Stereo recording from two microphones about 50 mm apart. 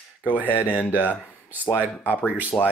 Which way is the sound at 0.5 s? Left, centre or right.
Left.